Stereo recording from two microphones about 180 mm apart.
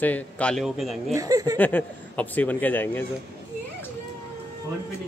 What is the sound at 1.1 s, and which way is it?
Speech, 20° right (ahead or behind).